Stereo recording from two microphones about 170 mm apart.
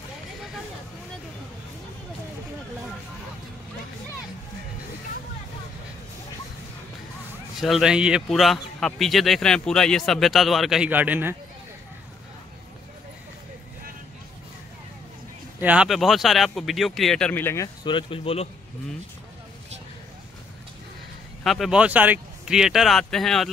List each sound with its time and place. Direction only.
7.6 s speech: centre (ahead or behind)
15.6 s speech: 5° right (ahead or behind); by 17.6 s 15° left (ahead or behind)
17.8 s speech: 30° left (ahead or behind)
21.5 s speech: 5° right (ahead or behind)